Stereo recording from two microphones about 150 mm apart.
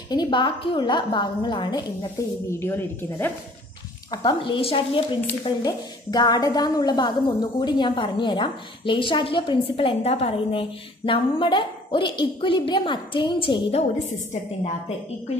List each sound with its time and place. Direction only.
0.1 s a woman's voice: 30° left (ahead or behind)
2.6 s speech: 15° left (ahead or behind)
4.1 s a woman's voice: 30° left (ahead or behind)